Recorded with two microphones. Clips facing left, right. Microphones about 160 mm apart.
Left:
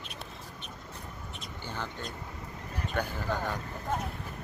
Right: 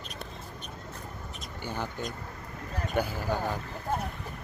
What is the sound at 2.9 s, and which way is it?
Speech, 10° right (ahead or behind).